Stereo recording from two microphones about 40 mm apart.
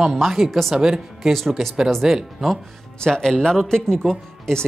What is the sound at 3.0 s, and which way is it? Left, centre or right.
Speech, centre.